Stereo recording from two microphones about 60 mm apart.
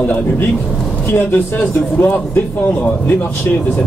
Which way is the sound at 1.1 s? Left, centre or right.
Left.